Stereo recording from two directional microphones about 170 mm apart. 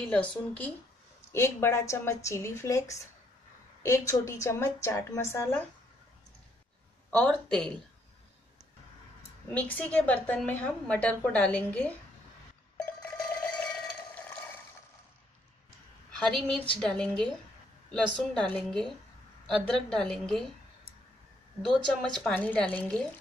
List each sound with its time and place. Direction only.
0.0 s a woman's voice: 5° left (ahead or behind)
7.1 s a woman's voice: 5° left (ahead or behind)
9.5 s a woman's voice: 10° left (ahead or behind)
12.7 s cowbell: 5° left (ahead or behind)
14.1 s a sound: 10° left (ahead or behind)
16.3 s a woman's voice: 5° left (ahead or behind)
21.6 s a woman's voice: centre (ahead or behind)